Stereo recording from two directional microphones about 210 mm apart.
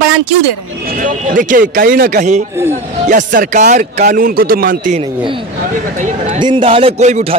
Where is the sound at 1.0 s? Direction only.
40° right (ahead or behind).